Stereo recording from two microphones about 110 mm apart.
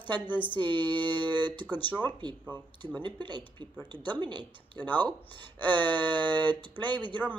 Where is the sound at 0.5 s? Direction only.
45° right (ahead or behind).